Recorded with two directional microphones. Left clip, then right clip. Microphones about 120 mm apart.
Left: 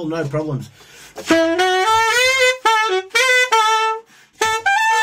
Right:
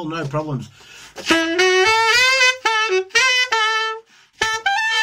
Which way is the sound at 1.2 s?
55° left (ahead or behind).